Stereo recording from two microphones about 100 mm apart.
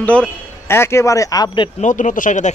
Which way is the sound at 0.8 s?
30° left (ahead or behind).